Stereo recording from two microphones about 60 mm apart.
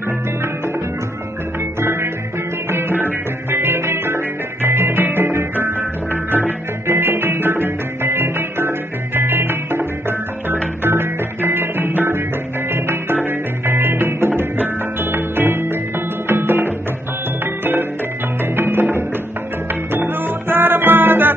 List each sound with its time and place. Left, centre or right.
1.8 s music: right
18.4 s music: right
20.4 s music: right